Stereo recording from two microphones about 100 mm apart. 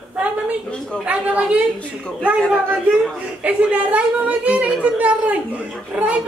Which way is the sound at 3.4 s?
15° right (ahead or behind).